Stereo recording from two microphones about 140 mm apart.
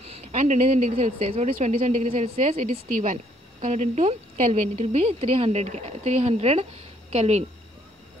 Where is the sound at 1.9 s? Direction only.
60° right (ahead or behind).